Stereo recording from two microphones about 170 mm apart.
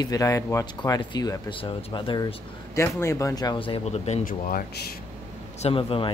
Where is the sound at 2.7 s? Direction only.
15° left (ahead or behind); by 4.3 s 40° left (ahead or behind).